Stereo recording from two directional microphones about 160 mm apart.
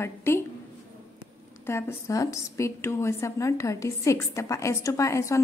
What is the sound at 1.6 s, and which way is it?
A woman's voice, 15° left (ahead or behind).